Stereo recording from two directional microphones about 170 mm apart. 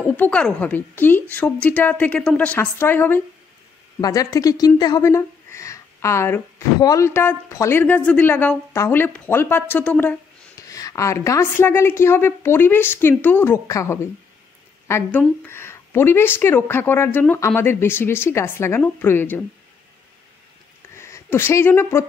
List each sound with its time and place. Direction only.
0.1 s speech: 10° left (ahead or behind)
20.9 s speech: 15° left (ahead or behind)